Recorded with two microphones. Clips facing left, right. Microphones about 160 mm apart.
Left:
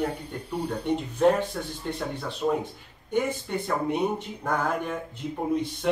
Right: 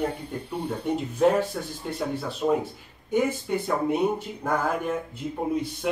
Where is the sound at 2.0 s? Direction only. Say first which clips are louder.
Right 4 dB; 5° right (ahead or behind).